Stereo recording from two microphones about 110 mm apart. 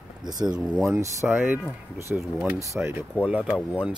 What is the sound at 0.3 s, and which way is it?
Speech, 40° right (ahead or behind).